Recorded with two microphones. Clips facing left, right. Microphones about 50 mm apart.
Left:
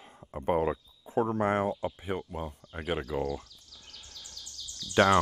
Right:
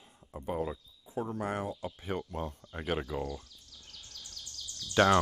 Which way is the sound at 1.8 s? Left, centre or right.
Centre.